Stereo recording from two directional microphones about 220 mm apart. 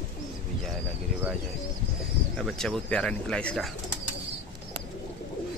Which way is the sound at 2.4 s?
Centre (ahead or behind).